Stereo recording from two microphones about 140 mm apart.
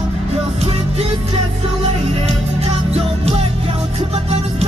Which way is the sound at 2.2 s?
45° right (ahead or behind).